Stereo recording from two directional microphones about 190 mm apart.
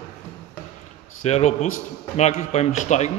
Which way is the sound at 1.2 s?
35° left (ahead or behind).